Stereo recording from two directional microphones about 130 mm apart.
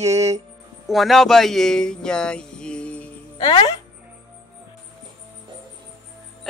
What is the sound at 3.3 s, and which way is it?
Speech, 35° left (ahead or behind).